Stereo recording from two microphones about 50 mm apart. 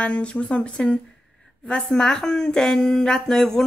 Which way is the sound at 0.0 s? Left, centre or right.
Left.